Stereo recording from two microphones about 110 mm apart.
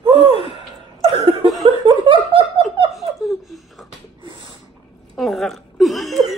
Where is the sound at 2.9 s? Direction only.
Centre (ahead or behind).